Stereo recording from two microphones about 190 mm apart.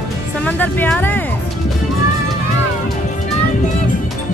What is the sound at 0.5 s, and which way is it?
Speech, 5° left (ahead or behind).